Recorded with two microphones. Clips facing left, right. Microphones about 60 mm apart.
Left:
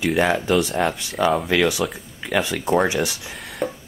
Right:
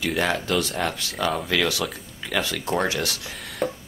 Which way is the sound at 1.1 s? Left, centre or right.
Centre.